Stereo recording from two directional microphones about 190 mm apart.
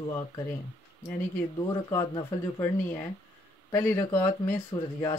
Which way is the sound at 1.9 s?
20° left (ahead or behind).